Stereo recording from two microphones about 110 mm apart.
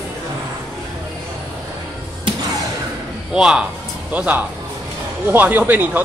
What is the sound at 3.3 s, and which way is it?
Speech, 10° right (ahead or behind).